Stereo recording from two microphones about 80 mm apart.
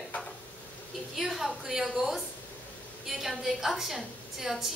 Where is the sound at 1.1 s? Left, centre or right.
Centre.